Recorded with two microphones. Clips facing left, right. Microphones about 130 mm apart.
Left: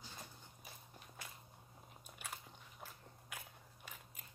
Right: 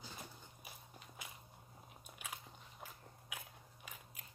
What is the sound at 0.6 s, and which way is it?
Walk, 10° right (ahead or behind).